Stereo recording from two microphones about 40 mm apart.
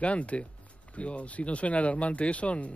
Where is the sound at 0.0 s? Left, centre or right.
Left.